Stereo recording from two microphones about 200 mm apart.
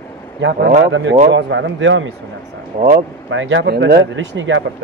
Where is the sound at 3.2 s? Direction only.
70° right (ahead or behind).